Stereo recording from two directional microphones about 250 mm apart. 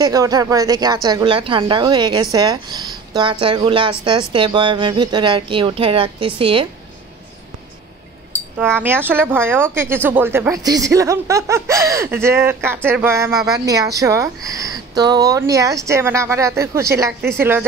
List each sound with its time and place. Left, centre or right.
0.0 s speech: centre
8.8 s speech: centre